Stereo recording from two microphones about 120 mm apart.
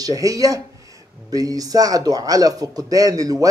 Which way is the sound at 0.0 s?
30° right (ahead or behind).